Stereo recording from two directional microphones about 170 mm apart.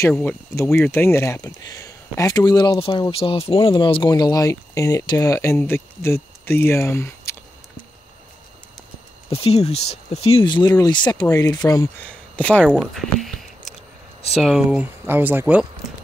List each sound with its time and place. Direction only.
0.1 s speech: 10° left (ahead or behind)
9.3 s speech: 35° left (ahead or behind)
12.4 s speech: 5° left (ahead or behind)